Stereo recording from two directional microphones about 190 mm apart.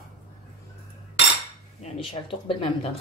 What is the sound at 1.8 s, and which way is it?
Speech, 30° left (ahead or behind).